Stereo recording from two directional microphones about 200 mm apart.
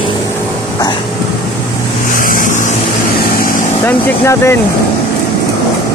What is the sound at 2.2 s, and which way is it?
Vehicle, 45° left (ahead or behind).